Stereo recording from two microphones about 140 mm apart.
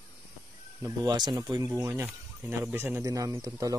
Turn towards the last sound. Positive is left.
turn(degrees=-25)  # may be behind; listen again after turning